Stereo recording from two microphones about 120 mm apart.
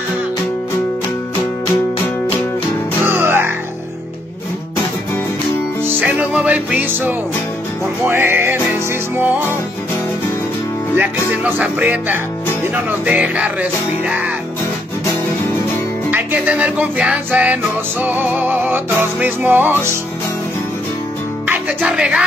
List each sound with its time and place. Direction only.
3.0 s music: 20° right (ahead or behind)
5.9 s music: 10° right (ahead or behind)
11.0 s music: 15° right (ahead or behind)
16.1 s music: 15° right (ahead or behind)
21.5 s music: 10° right (ahead or behind)